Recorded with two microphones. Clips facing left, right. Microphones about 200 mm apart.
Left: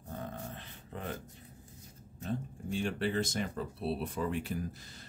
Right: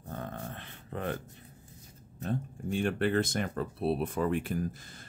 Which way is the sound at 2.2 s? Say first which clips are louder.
Right 3 dB; 55° right (ahead or behind).